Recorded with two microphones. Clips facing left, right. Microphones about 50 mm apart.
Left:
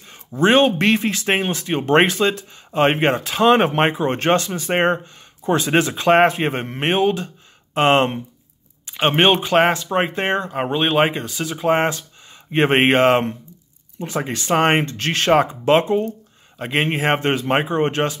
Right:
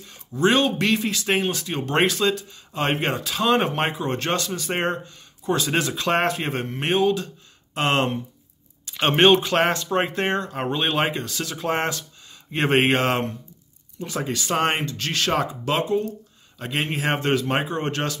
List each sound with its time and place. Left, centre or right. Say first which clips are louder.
0.0 s speech: left 3 dB; left
8.8 s speech: left 1 dB; centre